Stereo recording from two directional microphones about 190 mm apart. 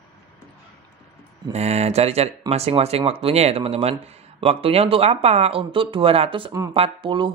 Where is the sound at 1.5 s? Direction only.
35° right (ahead or behind).